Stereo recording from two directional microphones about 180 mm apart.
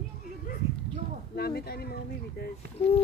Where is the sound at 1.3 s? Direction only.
60° left (ahead or behind).